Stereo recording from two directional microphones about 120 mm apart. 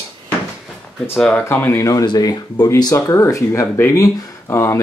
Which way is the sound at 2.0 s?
35° left (ahead or behind).